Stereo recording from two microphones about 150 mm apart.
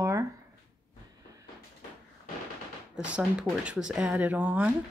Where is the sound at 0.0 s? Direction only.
20° right (ahead or behind).